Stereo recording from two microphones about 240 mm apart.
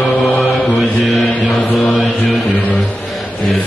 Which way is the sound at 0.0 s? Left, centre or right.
Centre.